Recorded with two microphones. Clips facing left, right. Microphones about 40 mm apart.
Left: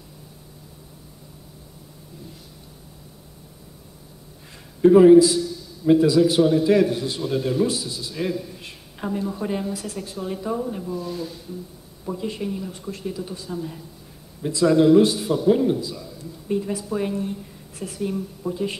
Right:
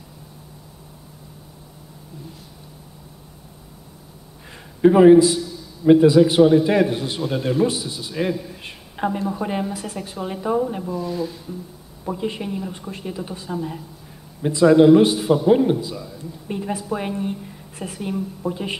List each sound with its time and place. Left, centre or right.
4.5 s a sound: right
5.9 s speech: right
9.2 s speech: centre
11.0 s speech: centre
12.0 s speech: right